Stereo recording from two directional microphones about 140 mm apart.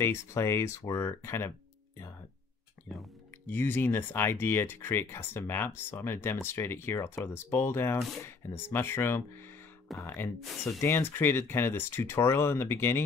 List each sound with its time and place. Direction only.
0.0 s speech: 20° left (ahead or behind)
3.4 s speech: 15° left (ahead or behind)